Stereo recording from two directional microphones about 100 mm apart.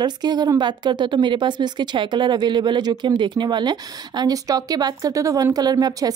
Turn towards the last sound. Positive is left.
turn(degrees=-40)  # may be behind; listen again after turning